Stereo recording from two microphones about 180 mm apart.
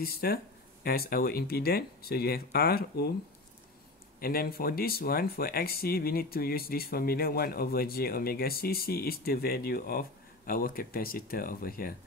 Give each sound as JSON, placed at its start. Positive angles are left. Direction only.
{"t": 0.0, "sound": "speech", "side_deg": 55}
{"t": 4.2, "sound": "speech", "side_deg": 55}